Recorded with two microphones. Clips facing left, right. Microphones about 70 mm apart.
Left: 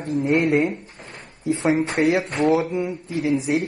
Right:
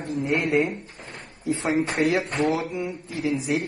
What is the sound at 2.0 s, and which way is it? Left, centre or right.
Speech, left.